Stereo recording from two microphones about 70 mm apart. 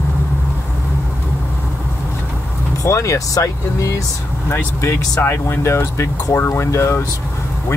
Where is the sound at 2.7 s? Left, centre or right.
Left.